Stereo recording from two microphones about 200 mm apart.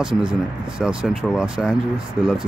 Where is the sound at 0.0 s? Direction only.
25° right (ahead or behind).